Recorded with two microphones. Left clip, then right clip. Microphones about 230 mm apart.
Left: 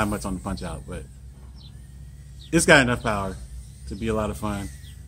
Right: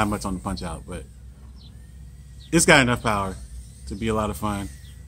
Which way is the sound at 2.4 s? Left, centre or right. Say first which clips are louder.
Even; right.